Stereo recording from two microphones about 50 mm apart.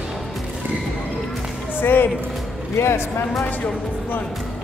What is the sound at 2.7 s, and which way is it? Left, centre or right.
Speech, left.